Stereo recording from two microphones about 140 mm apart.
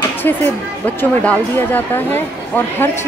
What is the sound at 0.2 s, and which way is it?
Speech, 15° left (ahead or behind).